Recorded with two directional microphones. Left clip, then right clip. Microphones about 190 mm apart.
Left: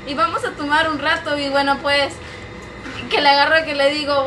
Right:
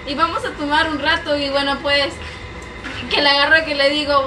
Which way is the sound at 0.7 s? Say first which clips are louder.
Even; 20° left (ahead or behind).